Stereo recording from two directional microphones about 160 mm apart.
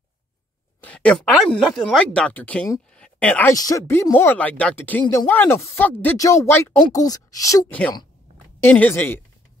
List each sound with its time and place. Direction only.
0.7 s speech: 10° left (ahead or behind)
2.9 s a sound: 5° left (ahead or behind)
3.5 s a woman's voice: 20° left (ahead or behind)